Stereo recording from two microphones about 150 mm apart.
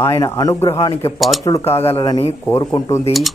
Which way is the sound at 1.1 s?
Centre (ahead or behind).